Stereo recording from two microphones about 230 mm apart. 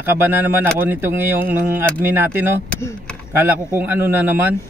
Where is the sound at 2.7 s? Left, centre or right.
Centre.